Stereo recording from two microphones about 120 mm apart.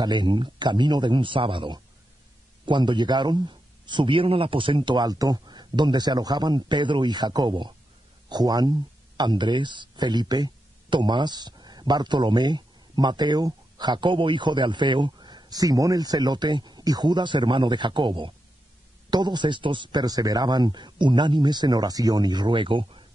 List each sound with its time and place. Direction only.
0.0 s a man's voice: 40° right (ahead or behind)